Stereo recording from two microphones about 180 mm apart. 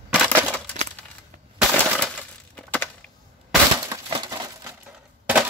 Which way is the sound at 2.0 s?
10° left (ahead or behind).